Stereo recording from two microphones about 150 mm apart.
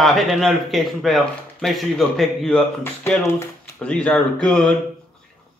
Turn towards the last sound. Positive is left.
turn(degrees=5)  # may be behind; listen again after turning